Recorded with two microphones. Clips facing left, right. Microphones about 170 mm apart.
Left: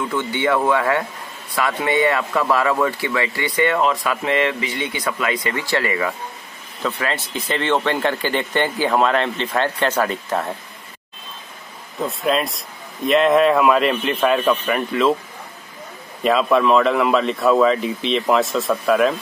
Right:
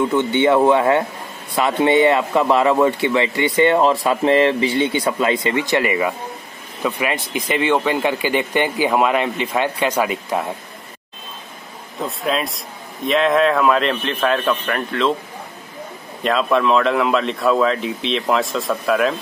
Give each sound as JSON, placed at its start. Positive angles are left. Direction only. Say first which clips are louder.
{"t": 0.1, "sound": "speech", "louder": "right 5 dB", "side_deg": -25}
{"t": 12.0, "sound": "a man's voice", "louder": "left 2 dB", "side_deg": 0}
{"t": 16.2, "sound": "a man's voice", "louder": "left 1 dB", "side_deg": 5}